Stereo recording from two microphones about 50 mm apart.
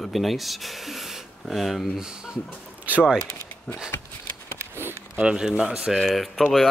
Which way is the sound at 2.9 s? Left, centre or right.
Right.